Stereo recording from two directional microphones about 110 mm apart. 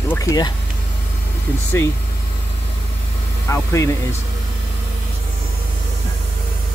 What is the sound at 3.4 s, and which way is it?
Speech, 25° left (ahead or behind).